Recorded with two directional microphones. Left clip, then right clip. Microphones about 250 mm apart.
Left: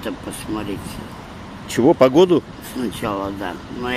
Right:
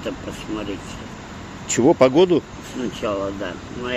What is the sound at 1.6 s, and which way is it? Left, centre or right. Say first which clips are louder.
Speech: left 1 dB; centre.